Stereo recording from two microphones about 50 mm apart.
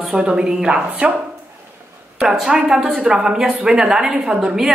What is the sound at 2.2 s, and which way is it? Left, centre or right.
A woman's voice, centre.